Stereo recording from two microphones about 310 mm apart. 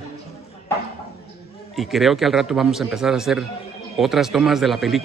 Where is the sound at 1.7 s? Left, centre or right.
Centre.